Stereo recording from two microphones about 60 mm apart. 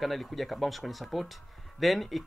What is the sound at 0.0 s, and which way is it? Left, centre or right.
Speech, centre.